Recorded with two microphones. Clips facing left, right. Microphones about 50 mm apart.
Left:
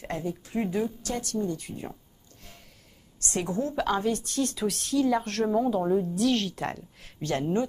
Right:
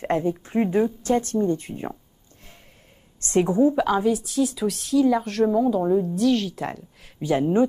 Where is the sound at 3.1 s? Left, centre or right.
Right.